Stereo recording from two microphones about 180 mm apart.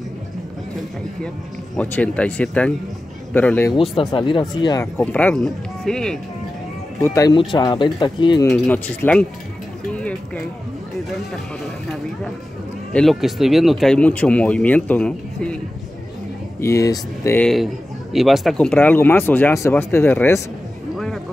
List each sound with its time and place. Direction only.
1.8 s speech: 10° left (ahead or behind)
3.7 s speech: 30° left (ahead or behind)
5.0 s speech: 10° left (ahead or behind)
7.0 s speech: 15° left (ahead or behind)
8.5 s speech: 10° left (ahead or behind)
9.9 s music: 5° left (ahead or behind)
12.9 s speech: centre (ahead or behind)
16.6 s speech: 20° left (ahead or behind)
18.1 s speech: centre (ahead or behind)